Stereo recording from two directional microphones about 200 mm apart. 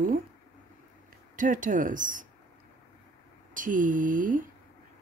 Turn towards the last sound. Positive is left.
turn(degrees=-40)  # may be behind; listen again after turning